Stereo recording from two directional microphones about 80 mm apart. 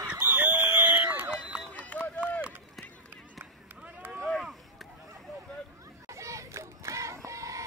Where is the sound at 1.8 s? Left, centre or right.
Centre.